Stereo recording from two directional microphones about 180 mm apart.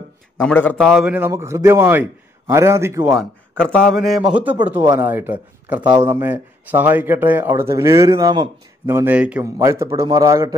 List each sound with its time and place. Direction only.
0.4 s a man's voice: 5° left (ahead or behind)
1.1 s speech: 15° right (ahead or behind)
3.2 s a man's voice: centre (ahead or behind); by 10.5 s 20° right (ahead or behind)